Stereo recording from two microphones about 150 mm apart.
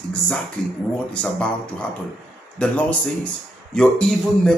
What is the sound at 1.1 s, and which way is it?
A man's voice, 5° left (ahead or behind).